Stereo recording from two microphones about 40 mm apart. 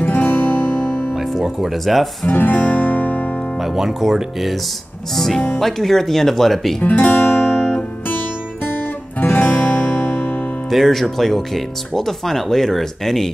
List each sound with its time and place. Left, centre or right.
0.0 s music: left
1.1 s speech: centre
2.3 s guitar: left
3.6 s speech: centre
5.1 s music: centre
5.6 s speech: centre
6.8 s speech: left
7.2 s guitar: left
7.4 s guitar: centre
9.2 s music: left
9.5 s music: left
10.7 s speech: centre